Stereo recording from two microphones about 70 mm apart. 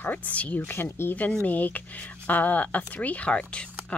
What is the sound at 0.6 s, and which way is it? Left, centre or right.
Speech, left.